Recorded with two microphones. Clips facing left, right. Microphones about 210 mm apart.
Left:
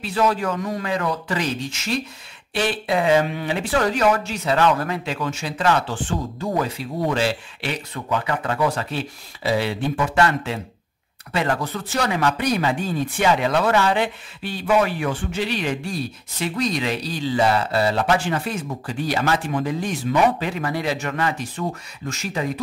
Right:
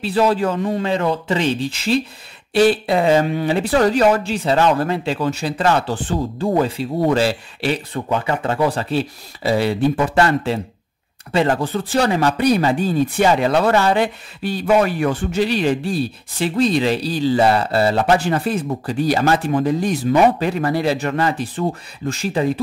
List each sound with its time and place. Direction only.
0.0 s a man's voice: 30° right (ahead or behind)